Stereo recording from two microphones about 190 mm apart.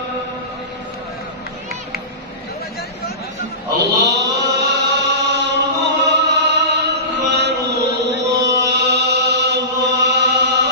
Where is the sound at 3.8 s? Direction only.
65° right (ahead or behind).